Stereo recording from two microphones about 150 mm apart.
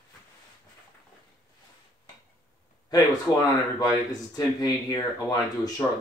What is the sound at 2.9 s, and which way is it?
Speech, 25° left (ahead or behind).